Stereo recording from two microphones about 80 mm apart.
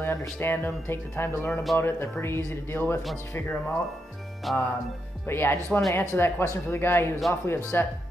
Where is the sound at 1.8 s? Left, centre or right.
Left.